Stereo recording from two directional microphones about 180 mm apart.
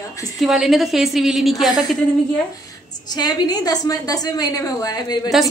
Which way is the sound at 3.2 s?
20° left (ahead or behind).